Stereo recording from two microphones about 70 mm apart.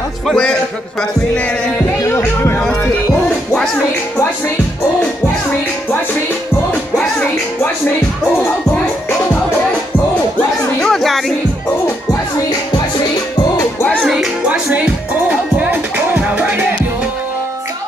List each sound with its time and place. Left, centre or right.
7.0 s music: centre
10.8 s music: centre
14.0 s music: centre; by 16.7 s right